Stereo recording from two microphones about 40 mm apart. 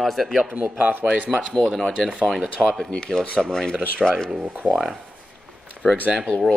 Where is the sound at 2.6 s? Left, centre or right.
Centre.